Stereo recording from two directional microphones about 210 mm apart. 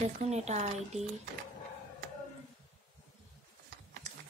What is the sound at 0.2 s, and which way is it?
Speech, 30° right (ahead or behind).